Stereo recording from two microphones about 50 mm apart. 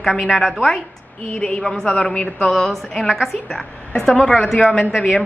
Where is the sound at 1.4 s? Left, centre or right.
Centre.